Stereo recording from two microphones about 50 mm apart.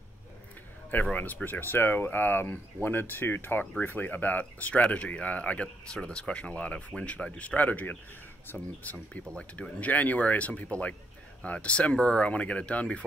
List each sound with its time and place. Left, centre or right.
1.1 s speech: left
8.5 s speech: left
9.3 s speech: left